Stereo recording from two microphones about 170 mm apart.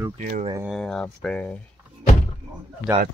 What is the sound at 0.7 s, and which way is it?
Speech, 5° left (ahead or behind).